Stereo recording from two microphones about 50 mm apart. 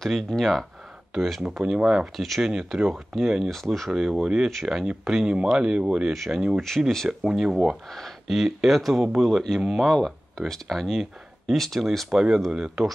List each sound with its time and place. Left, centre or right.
0.0 s speech: centre
1.6 s speech: centre
2.1 s speech: centre
3.4 s speech: centre
3.9 s speech: centre
6.1 s speech: centre
6.8 s speech: right
7.1 s speech: centre
7.9 s speech: centre
9.9 s a sound: centre
10.4 s speech: centre
12.1 s speech: centre